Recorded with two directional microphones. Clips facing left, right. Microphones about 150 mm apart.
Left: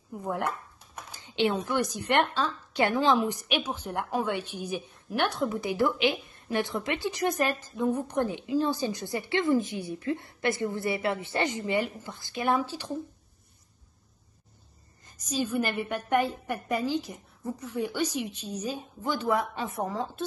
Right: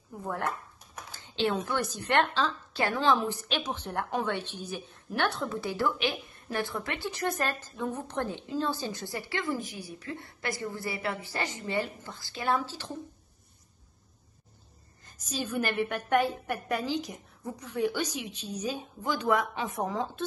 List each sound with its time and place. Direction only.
0.2 s a woman's voice: 15° left (ahead or behind)
15.0 s a woman's voice: 10° left (ahead or behind)
16.3 s a woman's voice: 10° right (ahead or behind)
16.6 s a woman's voice: 10° left (ahead or behind)
18.6 s a woman's voice: 10° right (ahead or behind)
19.2 s a woman's voice: 10° left (ahead or behind)
19.5 s a woman's voice: 10° right (ahead or behind)
19.9 s a woman's voice: centre (ahead or behind)